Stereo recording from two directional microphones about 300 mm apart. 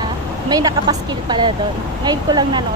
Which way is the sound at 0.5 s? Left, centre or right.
Centre.